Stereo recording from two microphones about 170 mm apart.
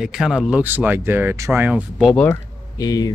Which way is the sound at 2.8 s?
20° left (ahead or behind).